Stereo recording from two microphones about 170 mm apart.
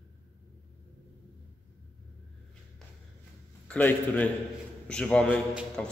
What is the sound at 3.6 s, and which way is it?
A man's voice, 10° left (ahead or behind).